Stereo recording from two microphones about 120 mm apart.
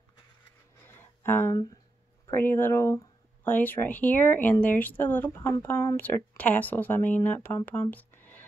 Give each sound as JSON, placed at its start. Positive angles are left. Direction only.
{"t": 0.8, "sound": "a sound", "side_deg": 20}
{"t": 1.5, "sound": "speech", "side_deg": 30}
{"t": 2.3, "sound": "speech", "side_deg": 15}